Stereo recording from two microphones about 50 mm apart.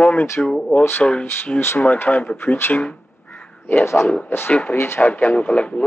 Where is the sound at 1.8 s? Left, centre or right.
Left.